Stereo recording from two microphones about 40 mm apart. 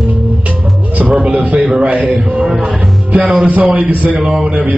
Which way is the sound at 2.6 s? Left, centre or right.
Right.